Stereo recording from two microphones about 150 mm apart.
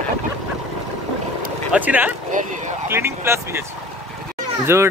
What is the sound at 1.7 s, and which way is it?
Speech, 10° right (ahead or behind).